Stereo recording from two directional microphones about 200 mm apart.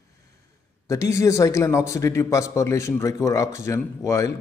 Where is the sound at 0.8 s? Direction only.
15° left (ahead or behind).